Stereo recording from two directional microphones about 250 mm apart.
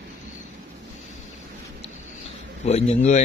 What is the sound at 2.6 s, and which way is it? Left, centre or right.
Speech, left.